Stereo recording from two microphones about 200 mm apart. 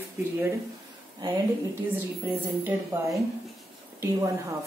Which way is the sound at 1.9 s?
15° right (ahead or behind).